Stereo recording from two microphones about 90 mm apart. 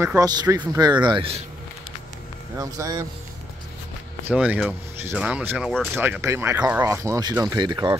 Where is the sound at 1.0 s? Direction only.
75° right (ahead or behind).